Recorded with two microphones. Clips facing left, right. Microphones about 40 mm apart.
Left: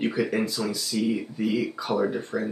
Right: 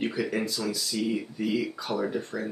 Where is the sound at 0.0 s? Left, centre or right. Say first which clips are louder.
Left 3 dB; centre.